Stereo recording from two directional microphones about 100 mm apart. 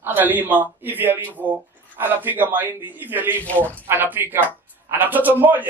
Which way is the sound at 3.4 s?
15° left (ahead or behind).